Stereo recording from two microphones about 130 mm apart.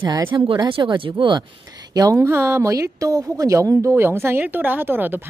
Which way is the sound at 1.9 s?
25° right (ahead or behind).